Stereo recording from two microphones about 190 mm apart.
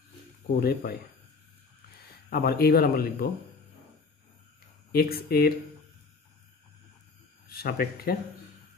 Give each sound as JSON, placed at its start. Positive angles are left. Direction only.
{"t": 0.6, "sound": "speech", "side_deg": 55}
{"t": 2.2, "sound": "speech", "side_deg": 50}
{"t": 4.9, "sound": "speech", "side_deg": 50}
{"t": 7.4, "sound": "speech", "side_deg": 55}